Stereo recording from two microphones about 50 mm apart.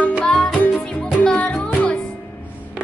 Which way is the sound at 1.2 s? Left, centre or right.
Centre.